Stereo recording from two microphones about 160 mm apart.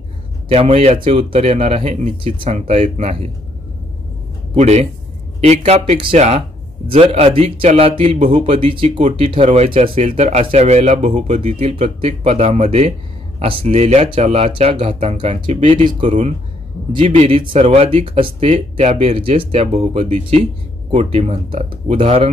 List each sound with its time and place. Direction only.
0.5 s speech: 40° right (ahead or behind)
4.6 s speech: 45° right (ahead or behind)